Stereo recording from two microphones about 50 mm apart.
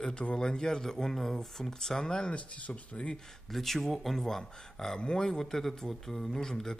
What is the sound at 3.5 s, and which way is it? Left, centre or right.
Speech, centre.